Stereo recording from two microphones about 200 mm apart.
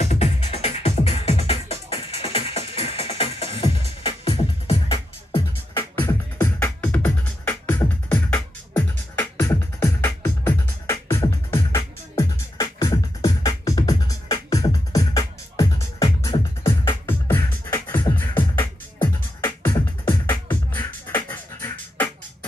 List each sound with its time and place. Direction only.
0.0 s music: 35° left (ahead or behind)
5.8 s music: 10° left (ahead or behind)